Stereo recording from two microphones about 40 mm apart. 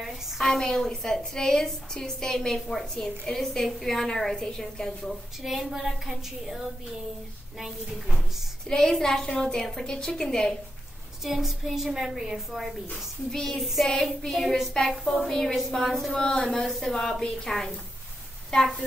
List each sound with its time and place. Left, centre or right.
0.4 s a woman's voice: centre
5.4 s a woman's voice: centre
8.6 s a woman's voice: centre
11.2 s a woman's voice: centre
12.9 s a woman's voice: centre
13.6 s child singing: centre
14.7 s a woman's voice: centre
15.5 s child singing: centre
16.2 s a woman's voice: centre
17.5 s child singing: centre
18.5 s a woman's voice: centre